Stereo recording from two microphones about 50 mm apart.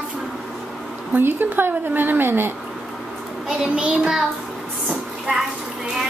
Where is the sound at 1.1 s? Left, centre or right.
Right.